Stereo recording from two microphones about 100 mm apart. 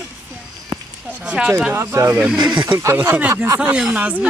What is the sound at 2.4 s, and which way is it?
Speech, 50° right (ahead or behind).